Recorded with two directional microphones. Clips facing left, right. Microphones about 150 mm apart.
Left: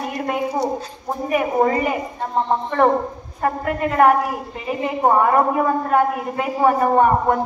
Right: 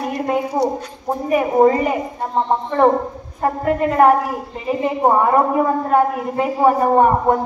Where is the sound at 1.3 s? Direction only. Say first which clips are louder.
Right 4 dB; 25° right (ahead or behind).